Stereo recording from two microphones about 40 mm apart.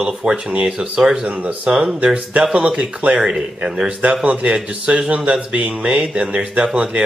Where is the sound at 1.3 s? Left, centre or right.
Right.